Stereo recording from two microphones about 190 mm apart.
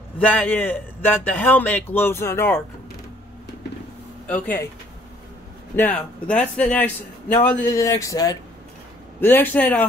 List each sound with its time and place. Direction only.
0.2 s a man's voice: 10° left (ahead or behind)
4.3 s a man's voice: 10° left (ahead or behind)
5.8 s a man's voice: 10° left (ahead or behind)